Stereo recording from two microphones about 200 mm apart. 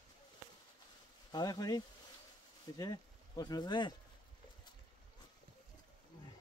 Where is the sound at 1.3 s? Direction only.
20° left (ahead or behind).